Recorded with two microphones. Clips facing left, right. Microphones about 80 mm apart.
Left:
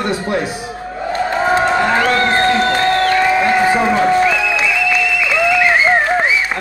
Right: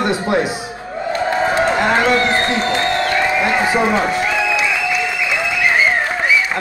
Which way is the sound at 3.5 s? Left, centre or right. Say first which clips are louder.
Left 2 dB; right.